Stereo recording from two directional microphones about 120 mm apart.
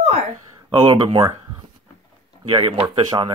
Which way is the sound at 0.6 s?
45° right (ahead or behind).